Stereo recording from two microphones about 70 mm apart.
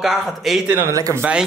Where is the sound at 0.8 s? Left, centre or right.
Right.